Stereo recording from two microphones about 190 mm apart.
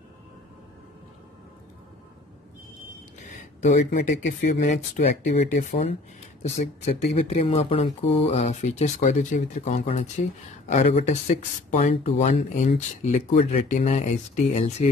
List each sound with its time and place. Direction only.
3.2 s speech: 40° left (ahead or behind)